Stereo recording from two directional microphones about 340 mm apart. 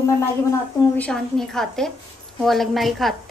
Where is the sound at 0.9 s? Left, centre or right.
Centre.